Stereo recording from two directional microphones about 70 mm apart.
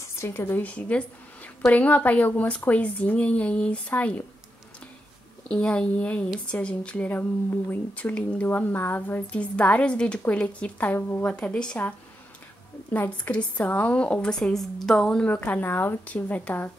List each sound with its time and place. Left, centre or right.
0.0 s a sound: left
0.3 s a woman's voice: left
5.5 s a woman's voice: centre
11.0 s a woman's voice: left
11.2 s a woman's voice: centre
12.9 s a woman's voice: left
15.2 s a woman's voice: left